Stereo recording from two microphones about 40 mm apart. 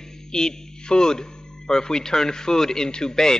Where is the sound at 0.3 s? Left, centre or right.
Centre.